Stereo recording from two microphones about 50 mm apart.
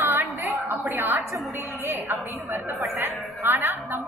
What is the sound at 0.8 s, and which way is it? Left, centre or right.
A woman's voice, right.